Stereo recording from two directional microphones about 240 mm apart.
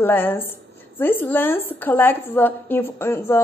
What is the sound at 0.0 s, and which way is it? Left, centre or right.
A woman's voice, centre.